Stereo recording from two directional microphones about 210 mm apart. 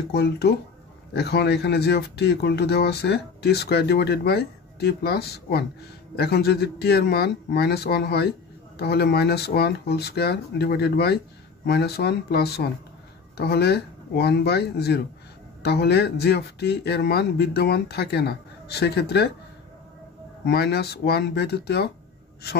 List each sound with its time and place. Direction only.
0.1 s speech: 50° left (ahead or behind)
20.4 s speech: 50° left (ahead or behind)